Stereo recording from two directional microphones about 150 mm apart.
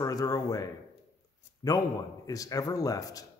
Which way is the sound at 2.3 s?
25° left (ahead or behind).